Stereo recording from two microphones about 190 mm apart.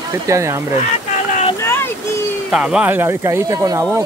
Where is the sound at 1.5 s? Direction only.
15° left (ahead or behind).